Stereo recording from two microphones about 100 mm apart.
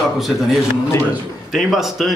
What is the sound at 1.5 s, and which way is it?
Speech, centre (ahead or behind).